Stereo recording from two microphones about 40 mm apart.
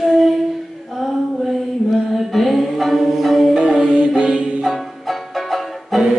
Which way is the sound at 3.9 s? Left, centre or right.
Right.